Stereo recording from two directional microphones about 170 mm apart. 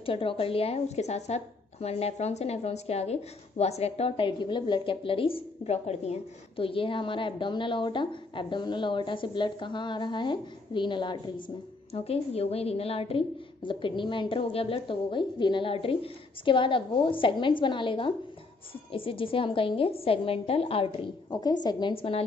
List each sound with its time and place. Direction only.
0.0 s a woman's voice: 30° left (ahead or behind)